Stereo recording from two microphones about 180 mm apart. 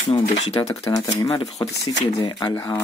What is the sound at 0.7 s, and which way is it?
Speech, 20° left (ahead or behind).